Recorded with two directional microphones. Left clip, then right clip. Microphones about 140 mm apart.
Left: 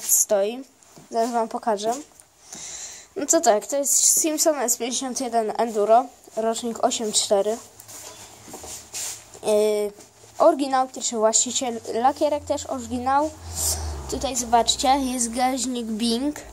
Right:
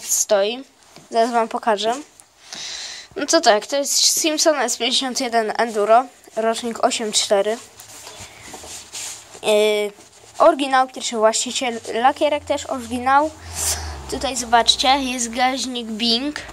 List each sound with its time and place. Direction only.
0.3 s a woman's voice: 5° left (ahead or behind)
9.4 s speech: 10° left (ahead or behind)
13.5 s a sound: 15° left (ahead or behind)
14.6 s a woman's voice: 25° left (ahead or behind)